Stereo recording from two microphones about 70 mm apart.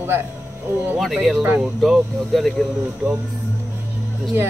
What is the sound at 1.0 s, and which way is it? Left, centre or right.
Speech, centre.